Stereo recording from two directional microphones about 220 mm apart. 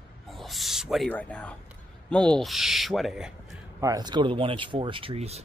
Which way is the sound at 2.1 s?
5° left (ahead or behind).